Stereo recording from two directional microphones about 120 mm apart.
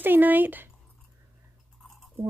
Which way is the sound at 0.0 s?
15° right (ahead or behind).